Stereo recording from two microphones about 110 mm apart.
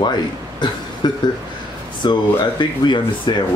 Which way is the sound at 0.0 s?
45° left (ahead or behind).